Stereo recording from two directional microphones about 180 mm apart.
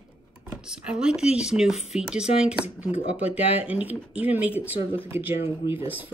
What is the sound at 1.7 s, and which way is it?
Speech, 35° left (ahead or behind).